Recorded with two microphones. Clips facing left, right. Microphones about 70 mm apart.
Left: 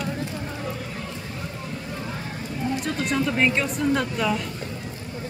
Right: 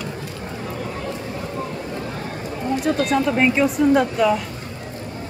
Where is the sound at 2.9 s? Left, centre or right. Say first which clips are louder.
Right 3 dB; centre.